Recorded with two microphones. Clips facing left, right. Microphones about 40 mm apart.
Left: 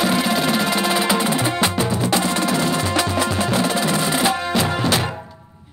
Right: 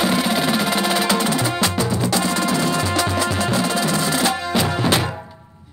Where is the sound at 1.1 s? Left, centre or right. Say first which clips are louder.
Even; centre; by 4.1 s left.